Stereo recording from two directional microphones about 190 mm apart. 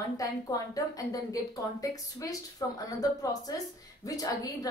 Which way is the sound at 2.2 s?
20° left (ahead or behind).